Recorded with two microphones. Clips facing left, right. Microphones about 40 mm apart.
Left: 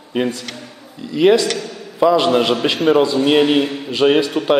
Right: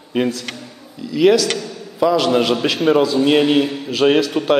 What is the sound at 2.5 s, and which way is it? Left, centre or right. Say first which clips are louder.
Speech: left 1 dB; left.